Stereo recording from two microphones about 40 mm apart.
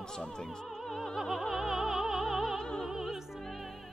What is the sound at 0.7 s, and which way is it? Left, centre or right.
Opera, centre.